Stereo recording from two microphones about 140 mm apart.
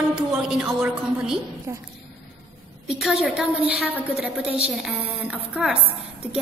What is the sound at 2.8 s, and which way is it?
A woman's voice, centre (ahead or behind).